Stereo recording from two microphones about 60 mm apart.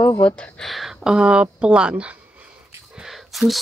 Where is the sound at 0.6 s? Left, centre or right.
Centre.